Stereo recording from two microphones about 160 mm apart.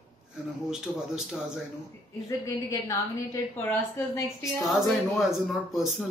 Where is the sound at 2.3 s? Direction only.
20° left (ahead or behind).